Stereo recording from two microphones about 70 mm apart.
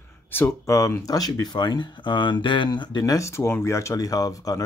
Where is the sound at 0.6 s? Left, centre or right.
Left.